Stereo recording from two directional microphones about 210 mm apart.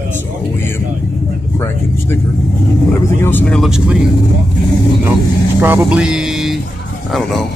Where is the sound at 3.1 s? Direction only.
10° left (ahead or behind).